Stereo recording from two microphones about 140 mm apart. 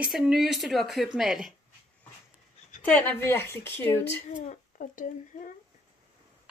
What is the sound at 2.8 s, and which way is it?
Speech, 10° left (ahead or behind).